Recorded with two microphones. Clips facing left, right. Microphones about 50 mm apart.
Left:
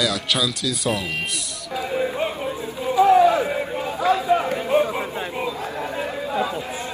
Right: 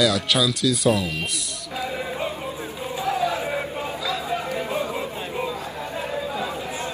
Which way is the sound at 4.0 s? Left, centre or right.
Left.